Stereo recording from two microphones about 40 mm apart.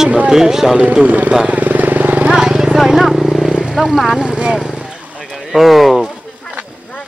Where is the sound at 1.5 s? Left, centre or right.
Right.